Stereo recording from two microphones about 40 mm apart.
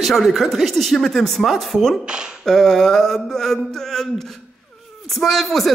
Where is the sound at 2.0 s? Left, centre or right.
Right.